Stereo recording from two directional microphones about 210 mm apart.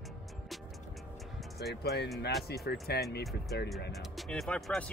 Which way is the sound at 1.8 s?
50° left (ahead or behind).